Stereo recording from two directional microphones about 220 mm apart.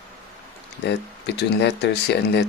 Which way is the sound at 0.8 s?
50° left (ahead or behind).